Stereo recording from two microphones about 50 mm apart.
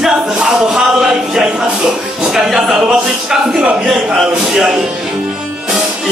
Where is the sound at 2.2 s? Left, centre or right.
Centre.